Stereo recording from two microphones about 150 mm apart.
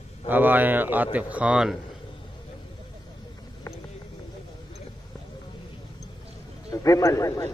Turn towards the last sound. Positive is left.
turn(degrees=20)  # may be behind; listen again after turning